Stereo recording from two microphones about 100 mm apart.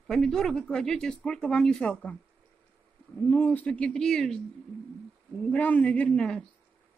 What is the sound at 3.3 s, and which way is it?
Speech, 20° left (ahead or behind).